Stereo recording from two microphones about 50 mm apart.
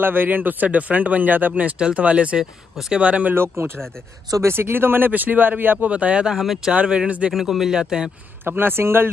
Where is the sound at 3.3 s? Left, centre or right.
Right.